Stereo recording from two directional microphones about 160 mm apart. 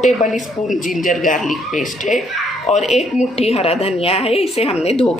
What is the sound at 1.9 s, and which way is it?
Speech, 50° left (ahead or behind).